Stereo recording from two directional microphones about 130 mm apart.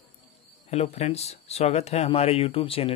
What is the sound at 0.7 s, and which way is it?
Speech, 55° left (ahead or behind).